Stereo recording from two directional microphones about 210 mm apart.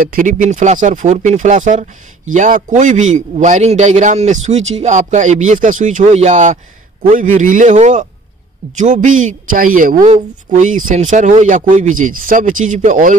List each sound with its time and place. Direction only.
0.0 s a man's voice: 40° right (ahead or behind)